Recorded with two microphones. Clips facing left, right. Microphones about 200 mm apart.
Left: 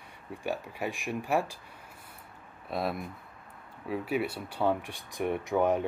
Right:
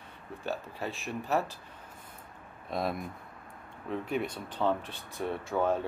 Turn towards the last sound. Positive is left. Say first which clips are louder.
# left 3 dB
turn(degrees=15)  # may be behind; listen again after turning